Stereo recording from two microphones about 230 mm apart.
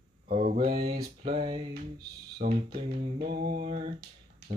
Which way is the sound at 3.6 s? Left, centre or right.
Right.